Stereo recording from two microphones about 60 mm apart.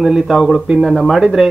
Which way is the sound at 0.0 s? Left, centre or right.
Centre.